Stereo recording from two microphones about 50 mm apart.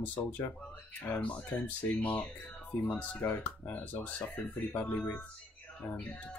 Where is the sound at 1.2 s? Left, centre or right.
Left.